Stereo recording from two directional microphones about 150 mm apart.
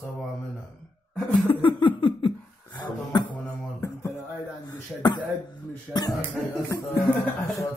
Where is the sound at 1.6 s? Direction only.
30° left (ahead or behind).